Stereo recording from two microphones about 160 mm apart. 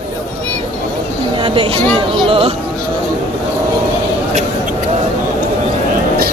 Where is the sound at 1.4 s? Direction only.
35° right (ahead or behind).